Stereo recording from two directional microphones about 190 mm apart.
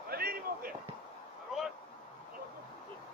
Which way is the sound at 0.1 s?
55° right (ahead or behind).